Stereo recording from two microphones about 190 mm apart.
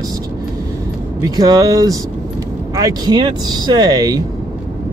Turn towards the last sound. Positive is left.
turn(degrees=-20)  # may be behind; listen again after turning